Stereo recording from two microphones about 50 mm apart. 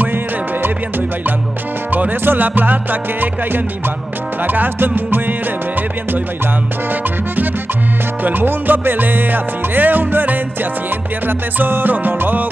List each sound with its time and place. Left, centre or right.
1.9 s music: right
8.2 s music: right